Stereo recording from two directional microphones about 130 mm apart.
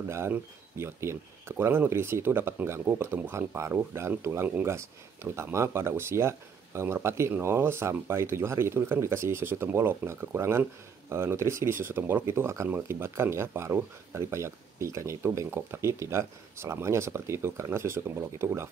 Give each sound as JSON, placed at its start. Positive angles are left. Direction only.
{"t": 0.1, "sound": "speech", "side_deg": -20}